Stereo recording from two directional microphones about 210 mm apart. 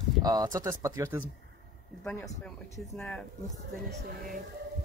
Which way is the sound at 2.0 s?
5° left (ahead or behind).